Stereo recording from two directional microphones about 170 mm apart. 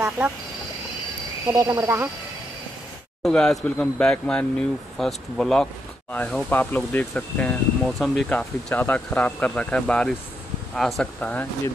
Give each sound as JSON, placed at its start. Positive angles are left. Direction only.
{"t": 1.5, "sound": "speech", "side_deg": -20}
{"t": 3.2, "sound": "speech", "side_deg": 5}